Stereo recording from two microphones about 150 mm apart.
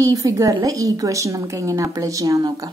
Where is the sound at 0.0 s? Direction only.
20° right (ahead or behind).